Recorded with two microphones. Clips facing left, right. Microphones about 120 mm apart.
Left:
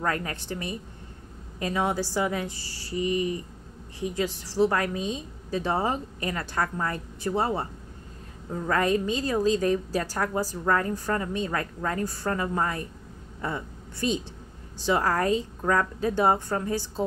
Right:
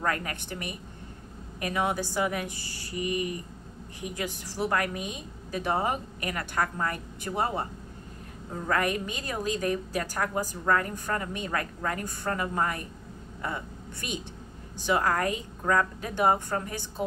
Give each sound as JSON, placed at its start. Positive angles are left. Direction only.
{"t": 0.0, "sound": "a woman's voice", "side_deg": 25}
{"t": 8.6, "sound": "a woman's voice", "side_deg": 30}